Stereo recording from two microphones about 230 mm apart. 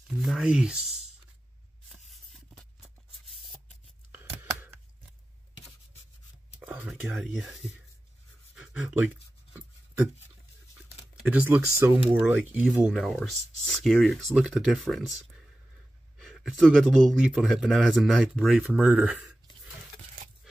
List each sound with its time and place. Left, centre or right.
0.1 s speech: centre
1.9 s a sound: centre
6.6 s speech: centre
11.2 s speech: centre
16.2 s speech: centre